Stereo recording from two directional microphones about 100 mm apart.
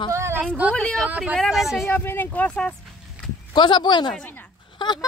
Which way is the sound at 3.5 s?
50° left (ahead or behind).